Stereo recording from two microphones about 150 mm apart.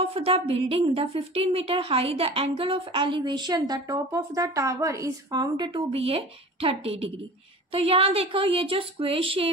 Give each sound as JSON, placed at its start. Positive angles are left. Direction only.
{"t": 0.0, "sound": "a woman's voice", "side_deg": -40}